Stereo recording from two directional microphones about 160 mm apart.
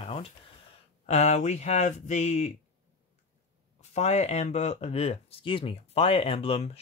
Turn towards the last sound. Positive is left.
turn(degrees=40)  # may be behind; listen again after turning